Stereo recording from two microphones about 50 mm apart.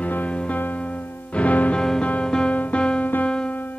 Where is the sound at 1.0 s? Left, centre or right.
Left.